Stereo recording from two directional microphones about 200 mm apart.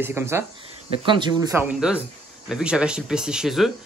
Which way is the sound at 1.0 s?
25° right (ahead or behind).